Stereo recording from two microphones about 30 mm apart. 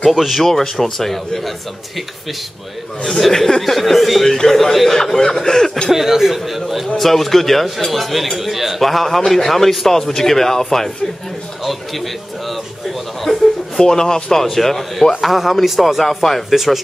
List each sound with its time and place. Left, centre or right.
0.2 s speech: centre
0.5 s speech: centre
3.1 s speech: centre
3.6 s speech: centre
6.0 s a man's voice: centre
7.0 s a man's voice: centre
11.6 s a sound: centre
13.7 s speech: left
14.4 s speech: centre
16.5 s a man's voice: centre